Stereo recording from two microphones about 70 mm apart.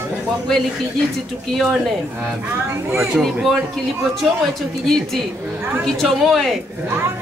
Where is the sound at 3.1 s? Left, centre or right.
Centre.